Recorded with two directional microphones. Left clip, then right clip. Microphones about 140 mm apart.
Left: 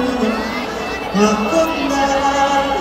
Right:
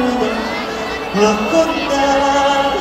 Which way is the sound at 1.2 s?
35° right (ahead or behind).